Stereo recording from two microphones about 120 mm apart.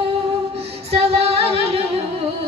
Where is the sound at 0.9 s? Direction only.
55° right (ahead or behind).